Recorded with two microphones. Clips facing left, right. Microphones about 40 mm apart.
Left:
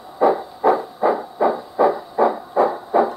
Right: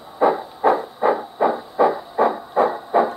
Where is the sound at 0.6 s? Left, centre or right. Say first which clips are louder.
Even; right.